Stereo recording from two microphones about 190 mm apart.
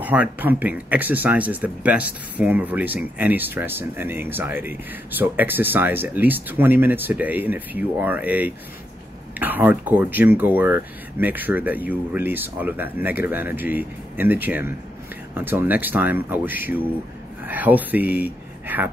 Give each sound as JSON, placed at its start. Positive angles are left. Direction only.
{"t": 0.0, "sound": "speech", "side_deg": -10}